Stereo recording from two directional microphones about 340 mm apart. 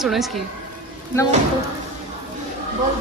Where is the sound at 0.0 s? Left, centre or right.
Centre.